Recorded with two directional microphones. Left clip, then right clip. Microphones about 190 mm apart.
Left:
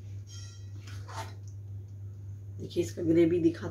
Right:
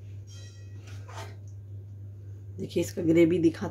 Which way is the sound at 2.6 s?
50° right (ahead or behind).